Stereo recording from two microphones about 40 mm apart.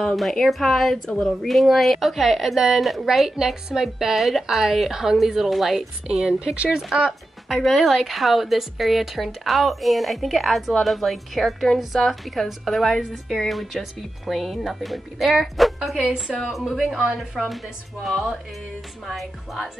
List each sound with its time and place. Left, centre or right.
0.3 s speech: centre
1.5 s a woman's voice: centre
6.1 s speech: right
7.5 s a woman's voice: centre
16.0 s speech: right
16.5 s a woman's voice: centre